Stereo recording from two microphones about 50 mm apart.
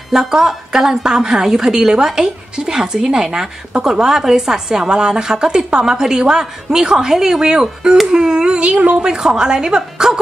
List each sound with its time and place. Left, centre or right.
0.1 s a woman's voice: centre; by 9.0 s right
9.0 s a woman's voice: centre